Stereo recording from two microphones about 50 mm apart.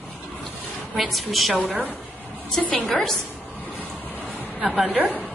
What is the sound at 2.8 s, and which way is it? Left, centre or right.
Speech, centre.